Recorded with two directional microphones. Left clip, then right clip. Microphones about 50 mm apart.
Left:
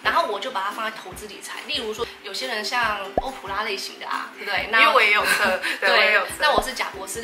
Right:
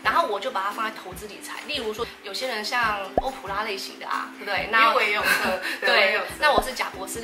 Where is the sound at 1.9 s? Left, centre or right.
Right.